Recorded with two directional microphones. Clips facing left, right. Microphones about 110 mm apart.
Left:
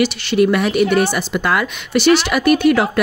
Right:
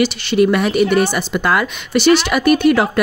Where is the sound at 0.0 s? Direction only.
25° right (ahead or behind).